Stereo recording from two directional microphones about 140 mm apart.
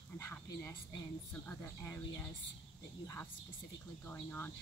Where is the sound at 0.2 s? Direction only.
15° left (ahead or behind).